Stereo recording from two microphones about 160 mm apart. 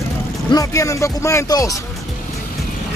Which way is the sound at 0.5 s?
20° left (ahead or behind).